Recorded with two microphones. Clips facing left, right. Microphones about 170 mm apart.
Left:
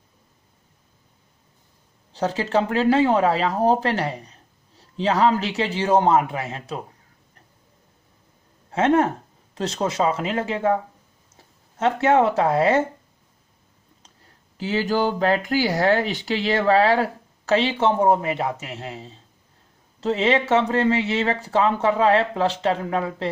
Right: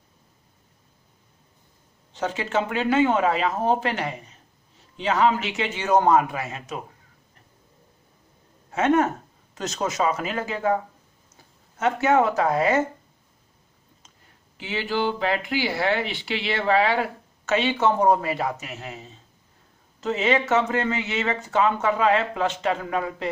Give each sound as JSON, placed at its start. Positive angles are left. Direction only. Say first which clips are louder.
{"t": 2.1, "sound": "speech", "louder": "left 4 dB", "side_deg": 35}
{"t": 8.7, "sound": "speech", "louder": "left 2 dB", "side_deg": 30}
{"t": 14.6, "sound": "speech", "louder": "left 4 dB", "side_deg": 40}